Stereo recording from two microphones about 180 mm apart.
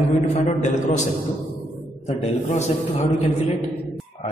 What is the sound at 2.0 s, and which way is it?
A man's voice, 40° left (ahead or behind).